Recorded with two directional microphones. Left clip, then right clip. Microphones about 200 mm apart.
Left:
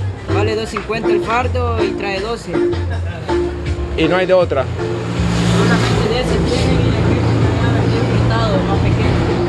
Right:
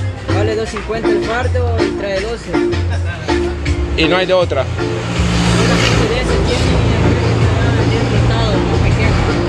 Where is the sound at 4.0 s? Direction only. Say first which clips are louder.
Even; 10° left (ahead or behind).